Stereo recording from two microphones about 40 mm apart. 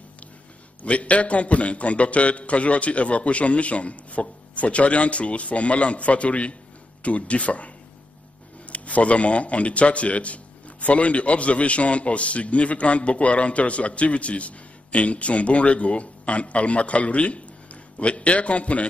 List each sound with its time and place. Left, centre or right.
0.8 s a man's voice: left